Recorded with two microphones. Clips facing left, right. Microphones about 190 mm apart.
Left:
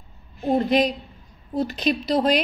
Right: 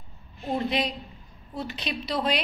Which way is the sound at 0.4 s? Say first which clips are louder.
Left 8 dB; 45° left (ahead or behind).